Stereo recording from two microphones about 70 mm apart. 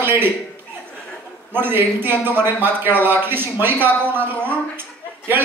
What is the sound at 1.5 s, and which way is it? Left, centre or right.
A man's voice, right.